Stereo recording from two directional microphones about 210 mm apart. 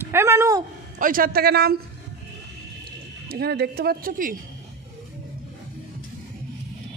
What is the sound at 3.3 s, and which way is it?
Speech, 50° right (ahead or behind).